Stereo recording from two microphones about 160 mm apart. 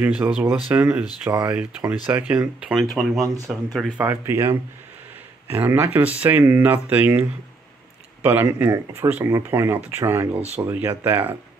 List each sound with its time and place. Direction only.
0.0 s speech: 10° right (ahead or behind)
4.0 s speech: 15° right (ahead or behind)